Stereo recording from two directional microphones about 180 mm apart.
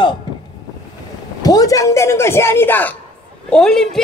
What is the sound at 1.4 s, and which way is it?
A woman's voice, 20° left (ahead or behind).